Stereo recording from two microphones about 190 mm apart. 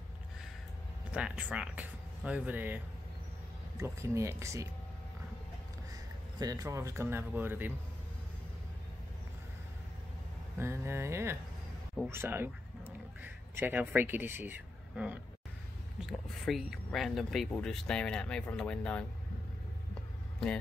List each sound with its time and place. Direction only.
1.1 s speech: 5° right (ahead or behind)
6.4 s speech: 20° right (ahead or behind)
10.6 s speech: 15° right (ahead or behind)
16.0 s speech: centre (ahead or behind)